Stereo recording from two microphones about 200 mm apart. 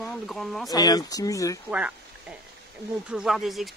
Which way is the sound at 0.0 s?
Centre (ahead or behind).